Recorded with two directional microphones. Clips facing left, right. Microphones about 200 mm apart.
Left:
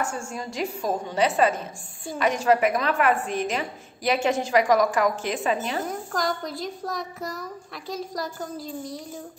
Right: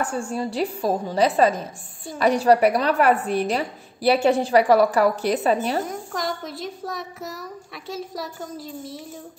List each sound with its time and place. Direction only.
0.0 s a woman's voice: 35° right (ahead or behind)
5.9 s a child's voice: centre (ahead or behind)